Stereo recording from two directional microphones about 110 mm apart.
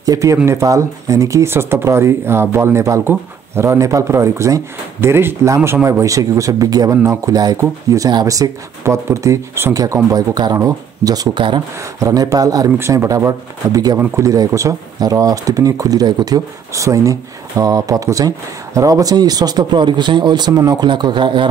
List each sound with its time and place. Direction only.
0.0 s speech: 30° right (ahead or behind)
12.7 s speech: 25° right (ahead or behind); by 21.5 s 45° right (ahead or behind)